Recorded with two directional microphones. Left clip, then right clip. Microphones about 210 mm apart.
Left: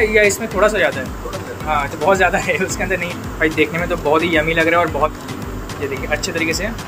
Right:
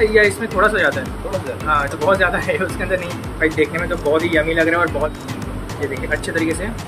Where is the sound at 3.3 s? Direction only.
15° left (ahead or behind).